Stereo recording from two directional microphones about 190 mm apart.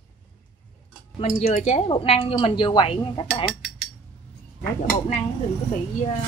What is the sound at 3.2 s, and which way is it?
Speech, centre (ahead or behind).